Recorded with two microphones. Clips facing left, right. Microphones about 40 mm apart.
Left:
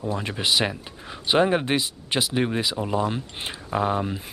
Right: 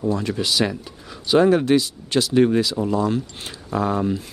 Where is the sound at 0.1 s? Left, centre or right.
Left.